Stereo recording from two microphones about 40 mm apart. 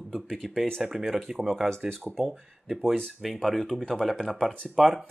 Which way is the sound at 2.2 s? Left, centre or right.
Centre.